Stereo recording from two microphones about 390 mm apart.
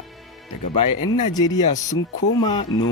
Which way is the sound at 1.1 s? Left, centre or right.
Centre.